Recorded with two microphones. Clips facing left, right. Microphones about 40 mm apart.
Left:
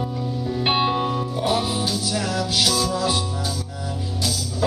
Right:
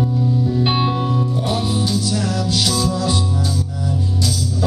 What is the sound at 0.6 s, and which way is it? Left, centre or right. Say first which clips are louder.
Music: left 3 dB; centre.